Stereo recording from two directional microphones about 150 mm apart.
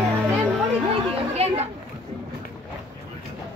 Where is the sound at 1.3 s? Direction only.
45° right (ahead or behind).